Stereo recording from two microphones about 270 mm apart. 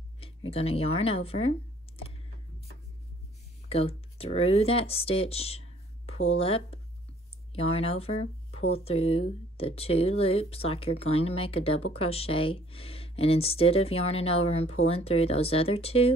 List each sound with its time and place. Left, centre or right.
0.5 s speech: left
3.6 s speech: left